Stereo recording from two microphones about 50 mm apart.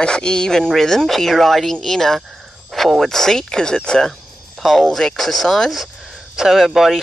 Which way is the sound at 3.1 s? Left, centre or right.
Centre.